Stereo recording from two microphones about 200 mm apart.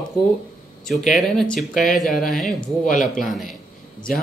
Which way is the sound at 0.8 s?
Centre (ahead or behind).